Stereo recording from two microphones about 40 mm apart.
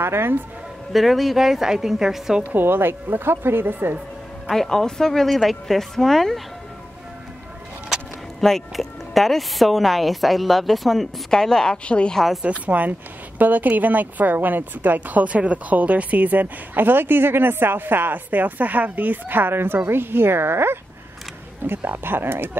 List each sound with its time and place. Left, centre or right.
0.0 s speech: right
0.9 s a woman's voice: centre
2.5 s speech: right
4.5 s speech: centre
8.4 s speech: centre
11.2 s a woman's voice: centre
11.8 s a woman's voice: left
12.4 s a woman's voice: right
16.7 s speech: right
21.6 s speech: right